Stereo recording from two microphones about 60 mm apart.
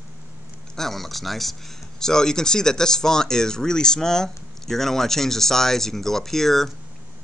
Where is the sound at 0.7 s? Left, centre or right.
Centre.